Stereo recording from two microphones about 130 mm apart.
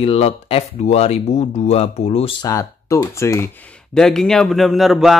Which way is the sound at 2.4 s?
25° left (ahead or behind).